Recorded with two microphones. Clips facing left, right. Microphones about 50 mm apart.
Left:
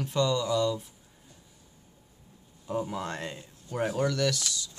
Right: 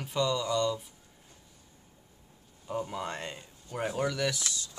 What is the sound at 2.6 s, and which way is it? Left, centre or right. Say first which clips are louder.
Speech: left 2 dB; centre.